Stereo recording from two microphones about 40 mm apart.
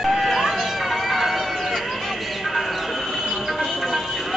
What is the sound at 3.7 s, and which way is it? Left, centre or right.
Music, centre.